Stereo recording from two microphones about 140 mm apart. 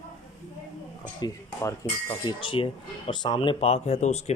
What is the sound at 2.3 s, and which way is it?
Speech, 35° left (ahead or behind).